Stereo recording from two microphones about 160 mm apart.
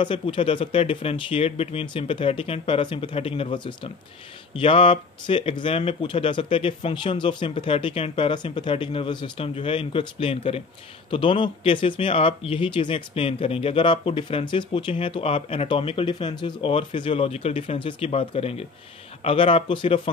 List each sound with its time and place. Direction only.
0.0 s speech: 30° left (ahead or behind)